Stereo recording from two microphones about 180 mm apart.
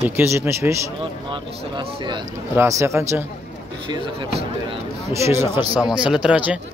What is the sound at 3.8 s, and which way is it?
Speech, 25° right (ahead or behind).